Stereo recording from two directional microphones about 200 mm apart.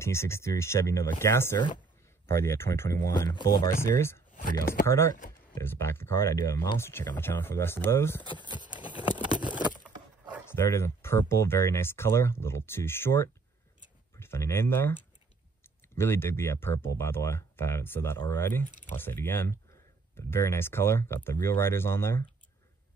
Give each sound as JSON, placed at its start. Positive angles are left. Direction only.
{"t": 0.0, "sound": "speech", "side_deg": 15}
{"t": 8.3, "sound": "speech", "side_deg": 25}
{"t": 10.5, "sound": "speech", "side_deg": 10}